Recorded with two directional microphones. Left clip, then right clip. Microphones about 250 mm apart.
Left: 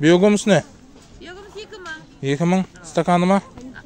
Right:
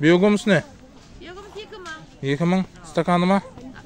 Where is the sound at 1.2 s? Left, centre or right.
Left.